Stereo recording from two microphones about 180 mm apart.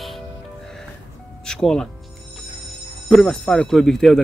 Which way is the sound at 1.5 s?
5° left (ahead or behind).